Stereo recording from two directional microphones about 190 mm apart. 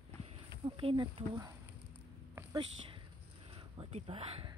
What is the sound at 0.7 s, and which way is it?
Speech, 25° right (ahead or behind).